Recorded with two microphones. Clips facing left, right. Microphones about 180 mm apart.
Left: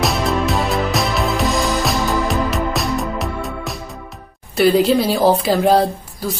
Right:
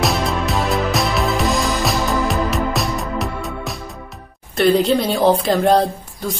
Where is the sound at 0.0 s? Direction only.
Centre (ahead or behind).